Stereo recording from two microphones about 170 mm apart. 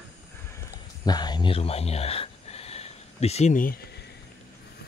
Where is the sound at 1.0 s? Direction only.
25° left (ahead or behind); by 3.8 s 50° left (ahead or behind).